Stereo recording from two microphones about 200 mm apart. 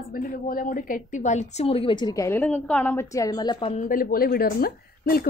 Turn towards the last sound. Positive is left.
turn(degrees=50)  # may be behind; listen again after turning